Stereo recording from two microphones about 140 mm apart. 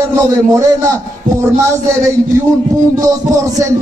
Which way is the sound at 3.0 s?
25° right (ahead or behind).